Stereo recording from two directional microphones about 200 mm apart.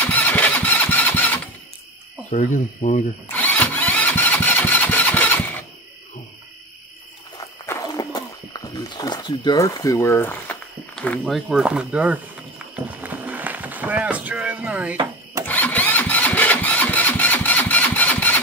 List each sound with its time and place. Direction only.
0.0 s engine: 10° left (ahead or behind)
2.3 s speech: 40° left (ahead or behind)
3.3 s engine starting: 10° left (ahead or behind)
7.3 s a sound: 15° left (ahead or behind); by 12.2 s 5° right (ahead or behind)
12.7 s vehicle: 10° right (ahead or behind)
15.4 s engine: 10° left (ahead or behind)